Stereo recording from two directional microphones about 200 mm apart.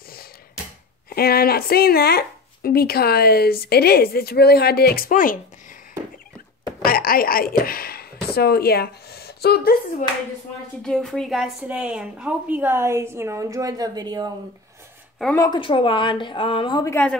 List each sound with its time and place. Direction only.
1.1 s speech: 50° left (ahead or behind)
6.8 s a sound: 45° left (ahead or behind)
10.8 s a woman's voice: centre (ahead or behind); by 14.3 s 20° right (ahead or behind)
15.3 s a woman's voice: 20° left (ahead or behind)
16.9 s speech: 5° left (ahead or behind)